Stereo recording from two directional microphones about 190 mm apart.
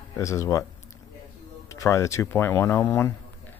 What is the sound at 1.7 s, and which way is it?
Speech, 15° left (ahead or behind).